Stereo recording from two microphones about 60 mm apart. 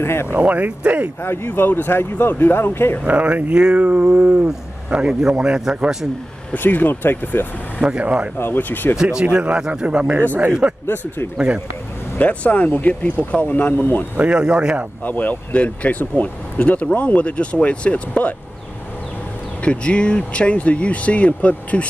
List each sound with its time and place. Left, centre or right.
0.0 s speech: left
0.4 s speech: right
1.2 s speech: left
3.1 s a man's voice: right
6.5 s speech: left
7.8 s a man's voice: centre
8.4 s speech: left
8.9 s a man's voice: centre
12.2 s speech: left
14.1 s a man's voice: centre
15.0 s speech: left
19.6 s speech: centre